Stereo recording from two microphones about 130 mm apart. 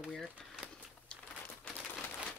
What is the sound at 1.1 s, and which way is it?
Crumpling, 5° left (ahead or behind).